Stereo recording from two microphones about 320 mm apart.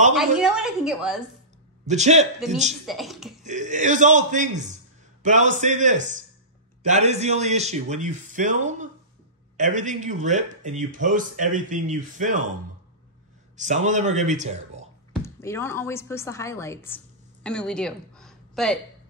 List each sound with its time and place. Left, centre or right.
0.1 s a woman's voice: centre
1.9 s speech: right
2.9 s a woman's voice: centre
3.4 s speech: right
13.6 s speech: right
15.2 s a woman's voice: centre